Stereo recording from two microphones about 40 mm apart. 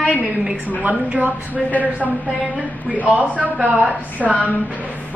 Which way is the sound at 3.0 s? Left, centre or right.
Right.